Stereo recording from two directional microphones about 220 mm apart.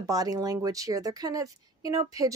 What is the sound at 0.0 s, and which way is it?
A woman's voice, 15° right (ahead or behind).